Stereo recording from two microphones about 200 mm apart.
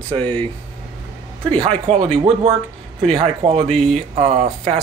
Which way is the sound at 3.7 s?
5° left (ahead or behind).